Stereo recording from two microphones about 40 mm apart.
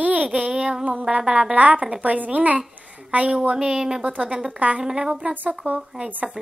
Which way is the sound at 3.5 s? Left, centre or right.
Centre.